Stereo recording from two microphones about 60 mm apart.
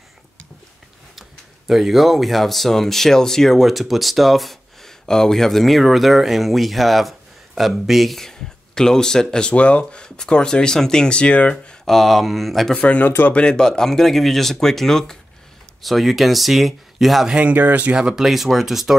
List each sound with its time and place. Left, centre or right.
1.7 s speech: centre
11.5 s speech: centre
12.7 s speech: left; by 17.3 s centre
17.4 s speech: right
17.9 s speech: centre
18.2 s speech: centre